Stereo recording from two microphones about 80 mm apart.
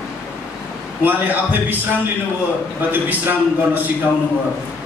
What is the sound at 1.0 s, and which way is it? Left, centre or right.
Speech, right.